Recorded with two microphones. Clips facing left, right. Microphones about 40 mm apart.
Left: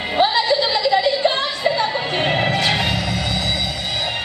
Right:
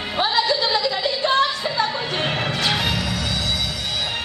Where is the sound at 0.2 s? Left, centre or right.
Centre.